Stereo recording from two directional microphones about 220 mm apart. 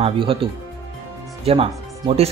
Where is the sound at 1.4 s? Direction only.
25° right (ahead or behind).